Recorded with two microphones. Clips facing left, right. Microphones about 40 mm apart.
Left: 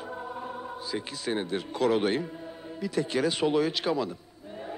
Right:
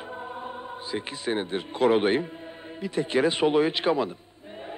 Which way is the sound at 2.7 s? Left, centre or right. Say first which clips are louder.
Right 3 dB; right.